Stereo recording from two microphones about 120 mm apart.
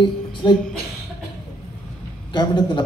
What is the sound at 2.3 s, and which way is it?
Speech, 40° left (ahead or behind).